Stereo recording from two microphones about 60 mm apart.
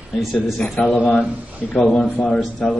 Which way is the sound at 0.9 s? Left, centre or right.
Centre.